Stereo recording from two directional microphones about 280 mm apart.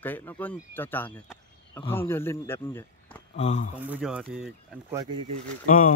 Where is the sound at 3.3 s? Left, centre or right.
Left.